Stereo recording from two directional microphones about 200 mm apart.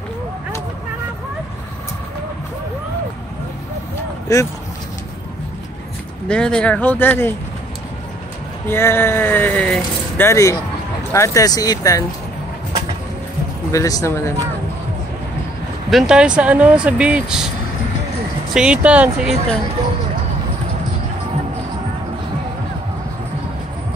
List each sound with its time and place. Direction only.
4.3 s speech: 15° left (ahead or behind)
6.2 s speech: 5° left (ahead or behind)
8.6 s speech: 10° left (ahead or behind)
13.7 s speech: 15° left (ahead or behind)
15.9 s speech: centre (ahead or behind)
18.5 s speech: 5° right (ahead or behind)